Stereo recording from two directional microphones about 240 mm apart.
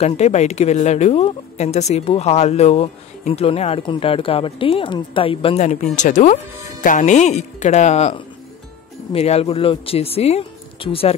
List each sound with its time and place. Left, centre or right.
0.0 s speech: left